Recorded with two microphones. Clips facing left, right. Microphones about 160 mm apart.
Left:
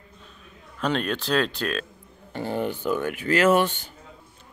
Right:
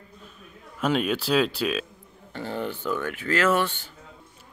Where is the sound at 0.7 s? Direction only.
5° right (ahead or behind).